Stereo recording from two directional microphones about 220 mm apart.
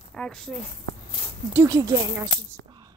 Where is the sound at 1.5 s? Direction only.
15° right (ahead or behind).